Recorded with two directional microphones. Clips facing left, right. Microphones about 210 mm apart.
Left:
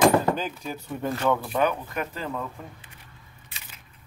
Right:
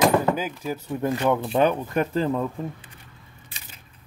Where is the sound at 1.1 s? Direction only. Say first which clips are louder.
Right 2 dB; 15° right (ahead or behind).